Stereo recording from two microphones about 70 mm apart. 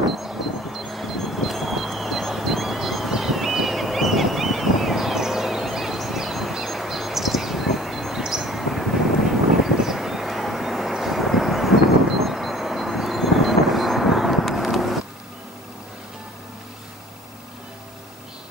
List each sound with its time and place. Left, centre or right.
0.1 s vehicle: centre